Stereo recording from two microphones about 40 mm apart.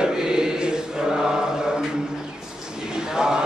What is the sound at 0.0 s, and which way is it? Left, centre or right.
Chant, centre.